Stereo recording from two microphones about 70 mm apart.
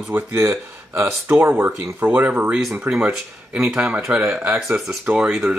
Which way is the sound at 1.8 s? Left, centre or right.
Centre.